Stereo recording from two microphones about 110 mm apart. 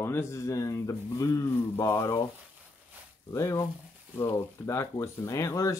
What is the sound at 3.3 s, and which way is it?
Speech, 30° left (ahead or behind).